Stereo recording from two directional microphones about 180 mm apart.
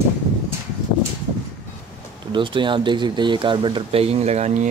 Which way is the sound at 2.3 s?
25° right (ahead or behind).